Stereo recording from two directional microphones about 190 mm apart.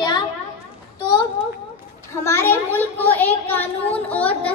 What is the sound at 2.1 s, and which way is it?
A child's voice, 15° left (ahead or behind).